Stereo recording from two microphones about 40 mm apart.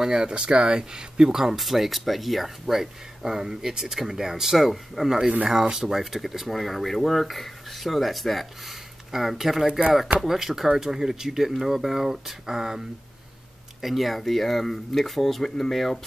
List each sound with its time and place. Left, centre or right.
0.0 s speech: centre
0.3 s speech: right; by 9.7 s centre
9.7 s speech: right
10.2 s speech: centre
13.7 s speech: centre